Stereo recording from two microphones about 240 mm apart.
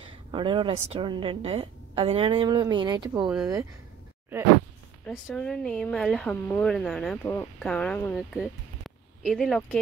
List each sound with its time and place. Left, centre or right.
0.3 s a woman's voice: centre
5.0 s speech: centre